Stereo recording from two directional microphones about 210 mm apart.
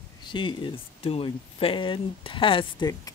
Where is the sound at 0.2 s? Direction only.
20° left (ahead or behind).